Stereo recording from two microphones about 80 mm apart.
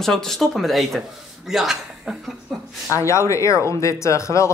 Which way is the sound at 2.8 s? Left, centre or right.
Left.